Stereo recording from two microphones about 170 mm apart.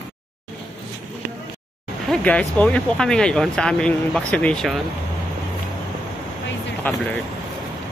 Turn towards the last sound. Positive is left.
turn(degrees=10)  # may be behind; listen again after turning